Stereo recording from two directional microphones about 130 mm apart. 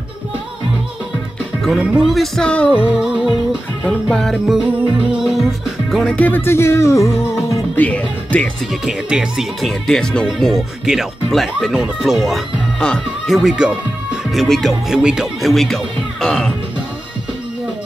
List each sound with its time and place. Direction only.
1.6 s speech: 5° right (ahead or behind)
2.9 s speech: 5° right (ahead or behind)
5.1 s music: centre (ahead or behind); by 7.8 s 25° left (ahead or behind)
7.8 s music: 10° left (ahead or behind)
8.8 s speech: 5° right (ahead or behind)